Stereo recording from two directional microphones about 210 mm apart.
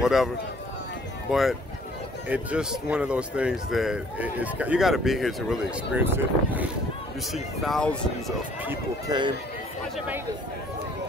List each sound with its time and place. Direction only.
0.0 s speech: centre (ahead or behind)
1.3 s speech: centre (ahead or behind)
7.3 s speech: centre (ahead or behind)
8.6 s speech: 20° right (ahead or behind)
9.9 s speech: 5° right (ahead or behind)